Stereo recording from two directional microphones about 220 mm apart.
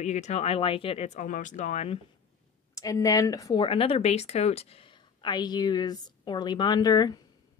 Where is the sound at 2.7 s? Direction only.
15° left (ahead or behind).